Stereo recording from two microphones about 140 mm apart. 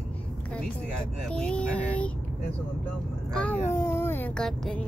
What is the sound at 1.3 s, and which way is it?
Speech, 5° left (ahead or behind).